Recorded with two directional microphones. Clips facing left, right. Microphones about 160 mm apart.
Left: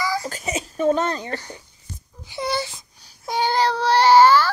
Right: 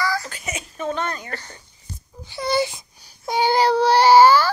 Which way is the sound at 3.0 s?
Centre (ahead or behind).